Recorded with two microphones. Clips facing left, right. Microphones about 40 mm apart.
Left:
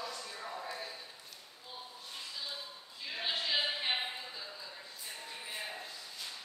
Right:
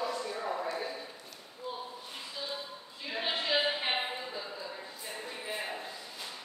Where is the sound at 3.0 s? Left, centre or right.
Centre.